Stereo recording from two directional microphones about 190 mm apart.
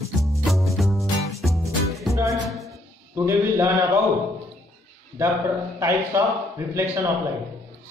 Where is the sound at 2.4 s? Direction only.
Centre (ahead or behind).